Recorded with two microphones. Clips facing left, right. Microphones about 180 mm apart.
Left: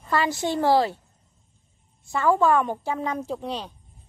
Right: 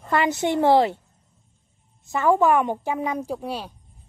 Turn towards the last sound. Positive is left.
turn(degrees=-10)  # may be behind; listen again after turning